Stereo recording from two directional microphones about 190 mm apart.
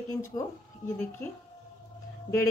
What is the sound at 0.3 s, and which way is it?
Speech, 25° left (ahead or behind).